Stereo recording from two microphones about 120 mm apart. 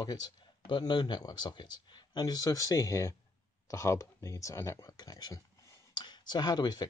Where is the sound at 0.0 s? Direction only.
35° left (ahead or behind).